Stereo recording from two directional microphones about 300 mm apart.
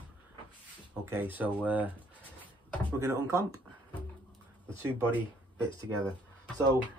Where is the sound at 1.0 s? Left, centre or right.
Centre.